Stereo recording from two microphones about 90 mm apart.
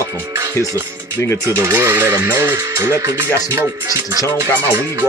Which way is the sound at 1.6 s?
30° right (ahead or behind).